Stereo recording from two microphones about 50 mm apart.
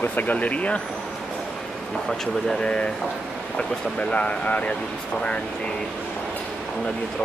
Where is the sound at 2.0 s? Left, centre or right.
Centre.